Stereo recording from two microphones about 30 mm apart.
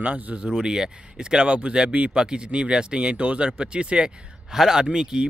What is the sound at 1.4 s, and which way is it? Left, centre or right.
Speech, right.